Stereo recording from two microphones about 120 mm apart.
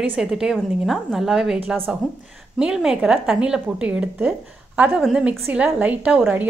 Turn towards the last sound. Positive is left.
turn(degrees=-10)  # may be behind; listen again after turning